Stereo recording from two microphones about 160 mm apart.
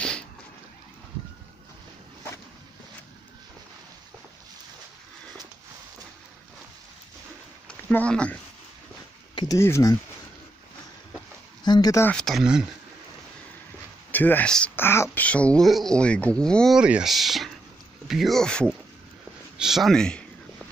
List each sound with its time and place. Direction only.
0.0 s a sound: 5° left (ahead or behind)
7.6 s speech: 5° left (ahead or behind)
9.3 s a sound: 30° left (ahead or behind)
9.6 s speech: 20° left (ahead or behind)
11.6 s speech: 25° left (ahead or behind)
12.1 s speech: 5° left (ahead or behind)
14.1 s speech: 10° left (ahead or behind)